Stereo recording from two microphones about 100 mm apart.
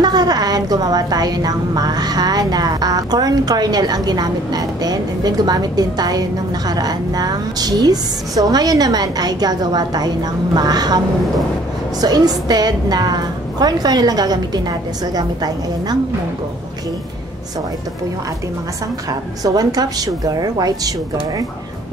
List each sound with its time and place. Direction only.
0.0 s a woman's voice: 40° right (ahead or behind)
12.0 s a woman's voice: 40° right (ahead or behind)
19.4 s a woman's voice: 40° right (ahead or behind)